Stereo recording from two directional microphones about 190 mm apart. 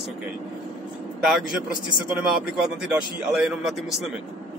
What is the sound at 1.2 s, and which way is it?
Speech, centre (ahead or behind).